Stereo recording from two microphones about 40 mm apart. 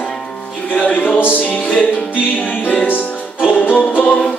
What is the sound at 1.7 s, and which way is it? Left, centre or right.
Music, left.